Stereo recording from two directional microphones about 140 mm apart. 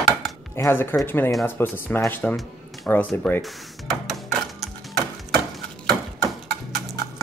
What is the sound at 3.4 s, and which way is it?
Speech, centre (ahead or behind).